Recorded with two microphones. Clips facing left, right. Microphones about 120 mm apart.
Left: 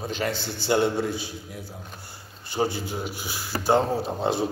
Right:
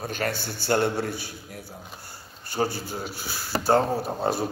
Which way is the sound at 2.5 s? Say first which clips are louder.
Left 1 dB; 15° left (ahead or behind).